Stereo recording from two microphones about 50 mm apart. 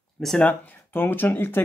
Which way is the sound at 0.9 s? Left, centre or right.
Left.